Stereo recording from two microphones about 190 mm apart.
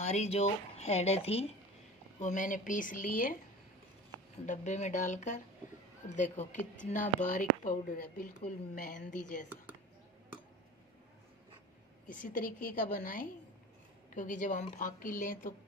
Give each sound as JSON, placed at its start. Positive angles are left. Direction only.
{"t": 0.0, "sound": "a woman's voice", "side_deg": 35}
{"t": 4.5, "sound": "a woman's voice", "side_deg": 40}
{"t": 12.1, "sound": "a woman's voice", "side_deg": 40}